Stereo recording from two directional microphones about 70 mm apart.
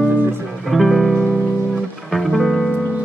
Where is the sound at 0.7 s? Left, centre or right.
Centre.